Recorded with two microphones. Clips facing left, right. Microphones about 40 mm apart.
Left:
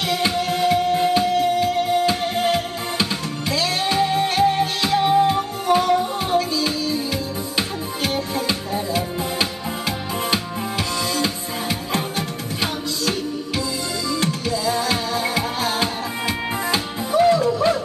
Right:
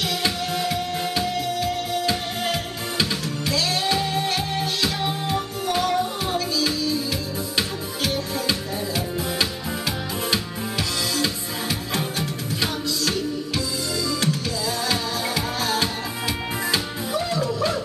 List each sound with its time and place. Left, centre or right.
0.1 s music: left
14.0 s music: left